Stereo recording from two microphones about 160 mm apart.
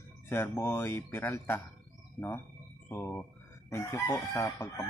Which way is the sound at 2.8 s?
15° left (ahead or behind).